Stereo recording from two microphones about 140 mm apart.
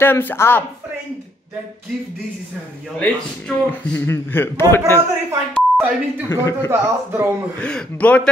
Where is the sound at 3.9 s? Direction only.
15° left (ahead or behind).